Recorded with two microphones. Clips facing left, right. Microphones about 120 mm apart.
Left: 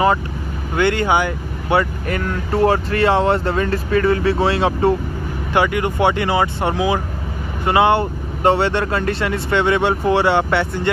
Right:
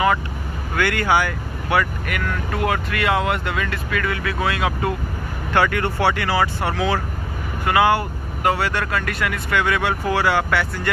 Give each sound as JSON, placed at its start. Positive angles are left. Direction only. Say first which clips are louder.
{"t": 0.7, "sound": "speech", "louder": "left 3 dB", "side_deg": 25}
{"t": 5.5, "sound": "speech", "louder": "left 2 dB", "side_deg": 15}